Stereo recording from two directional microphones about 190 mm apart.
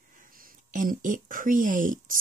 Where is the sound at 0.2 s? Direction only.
50° right (ahead or behind).